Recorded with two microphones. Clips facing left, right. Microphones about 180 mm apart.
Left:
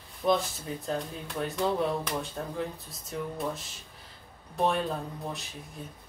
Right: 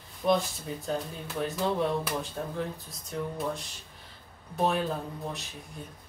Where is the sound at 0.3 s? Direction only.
Centre (ahead or behind).